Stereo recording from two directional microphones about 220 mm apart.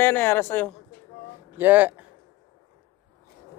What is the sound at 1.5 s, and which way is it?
Speech, 10° right (ahead or behind).